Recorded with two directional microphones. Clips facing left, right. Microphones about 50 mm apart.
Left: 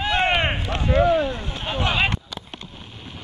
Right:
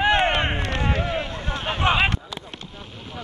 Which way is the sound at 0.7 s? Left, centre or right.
Right.